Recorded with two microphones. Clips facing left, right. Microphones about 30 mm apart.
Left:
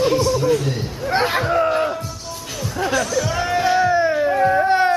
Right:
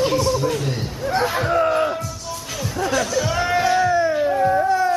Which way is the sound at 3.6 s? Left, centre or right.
Centre.